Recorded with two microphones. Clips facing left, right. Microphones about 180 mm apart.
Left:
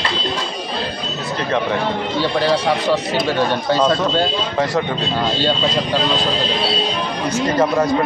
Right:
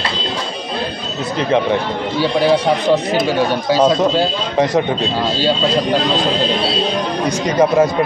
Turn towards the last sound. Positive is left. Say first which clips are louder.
# right 3 dB
turn(degrees=-20)  # may be behind; listen again after turning